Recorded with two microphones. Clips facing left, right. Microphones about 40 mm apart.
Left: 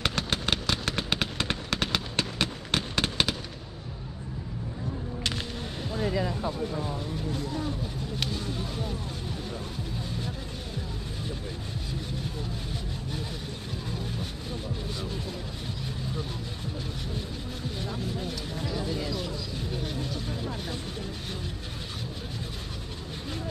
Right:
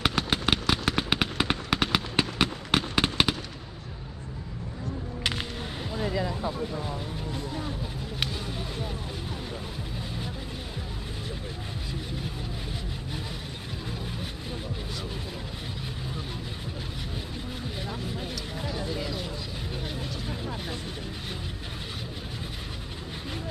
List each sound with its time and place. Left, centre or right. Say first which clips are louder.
0.0 s fireworks: right 3 dB; centre
17.8 s vehicle: left 3 dB; centre